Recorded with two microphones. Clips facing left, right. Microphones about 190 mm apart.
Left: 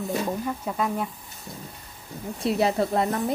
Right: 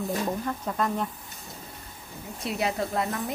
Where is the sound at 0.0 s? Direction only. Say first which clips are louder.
Left 1 dB; 5° left (ahead or behind).